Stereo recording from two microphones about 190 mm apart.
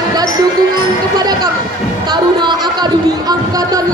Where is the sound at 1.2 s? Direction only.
20° right (ahead or behind).